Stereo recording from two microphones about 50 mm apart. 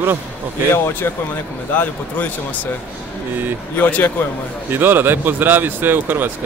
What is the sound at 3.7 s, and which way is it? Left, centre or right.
Speech, left.